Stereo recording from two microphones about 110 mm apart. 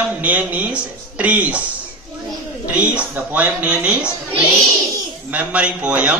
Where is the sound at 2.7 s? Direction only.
10° right (ahead or behind).